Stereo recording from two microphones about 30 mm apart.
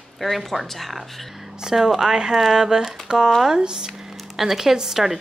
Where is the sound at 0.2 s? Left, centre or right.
Centre.